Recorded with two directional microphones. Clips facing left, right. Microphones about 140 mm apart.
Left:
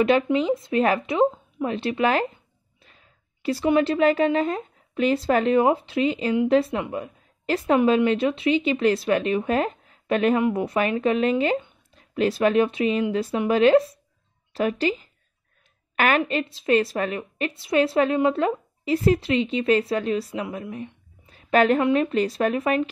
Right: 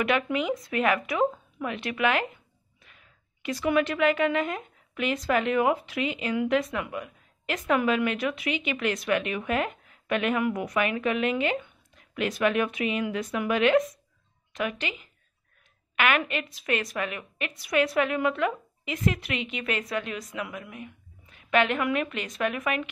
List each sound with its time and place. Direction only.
0.0 s a woman's voice: 30° left (ahead or behind)